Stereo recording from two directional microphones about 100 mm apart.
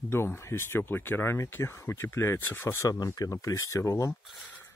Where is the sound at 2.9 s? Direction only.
40° left (ahead or behind).